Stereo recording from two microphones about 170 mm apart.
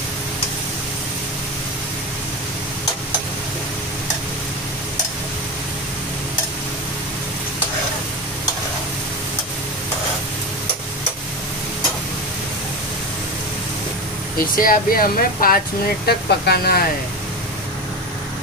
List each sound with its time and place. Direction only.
14.4 s speech: 55° left (ahead or behind)
16.1 s speech: 70° left (ahead or behind)